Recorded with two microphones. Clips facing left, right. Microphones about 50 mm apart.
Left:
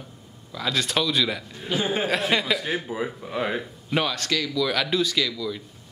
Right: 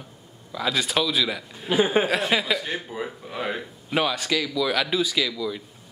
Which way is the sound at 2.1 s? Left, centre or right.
Centre.